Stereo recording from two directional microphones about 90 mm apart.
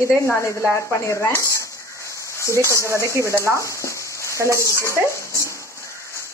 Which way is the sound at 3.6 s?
35° left (ahead or behind).